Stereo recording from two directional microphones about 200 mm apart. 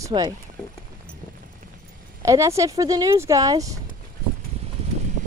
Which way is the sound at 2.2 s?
15° right (ahead or behind).